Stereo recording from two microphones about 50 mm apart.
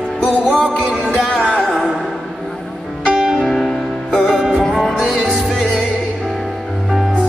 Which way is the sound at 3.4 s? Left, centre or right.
Centre.